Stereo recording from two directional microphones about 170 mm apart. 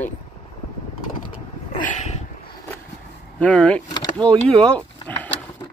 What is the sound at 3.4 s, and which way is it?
Speech, 5° left (ahead or behind).